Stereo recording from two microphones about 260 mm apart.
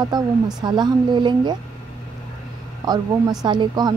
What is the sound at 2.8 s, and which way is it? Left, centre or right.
A woman's voice, centre.